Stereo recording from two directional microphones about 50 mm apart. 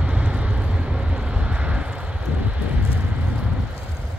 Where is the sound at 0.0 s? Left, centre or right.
Right.